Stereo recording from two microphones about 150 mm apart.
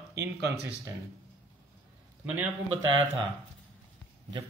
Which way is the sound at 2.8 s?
30° right (ahead or behind).